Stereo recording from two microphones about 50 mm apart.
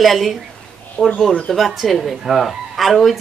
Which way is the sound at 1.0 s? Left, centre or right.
Left.